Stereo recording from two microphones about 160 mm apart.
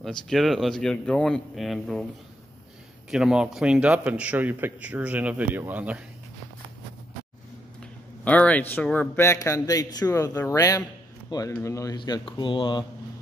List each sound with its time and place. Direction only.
0.0 s speech: centre (ahead or behind)
3.1 s a man's voice: 5° right (ahead or behind)
7.8 s a man's voice: 10° left (ahead or behind); by 12.8 s 30° left (ahead or behind)